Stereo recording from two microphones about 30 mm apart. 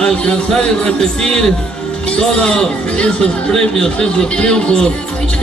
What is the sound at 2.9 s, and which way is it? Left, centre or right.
Speech, left.